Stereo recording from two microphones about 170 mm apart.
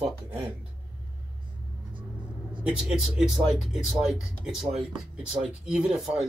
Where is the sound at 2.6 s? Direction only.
5° right (ahead or behind).